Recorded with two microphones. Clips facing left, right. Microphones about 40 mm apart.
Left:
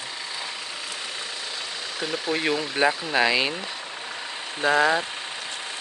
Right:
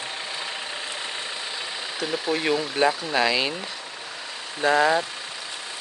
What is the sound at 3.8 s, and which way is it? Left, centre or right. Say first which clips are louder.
Vehicle: left 2 dB; centre.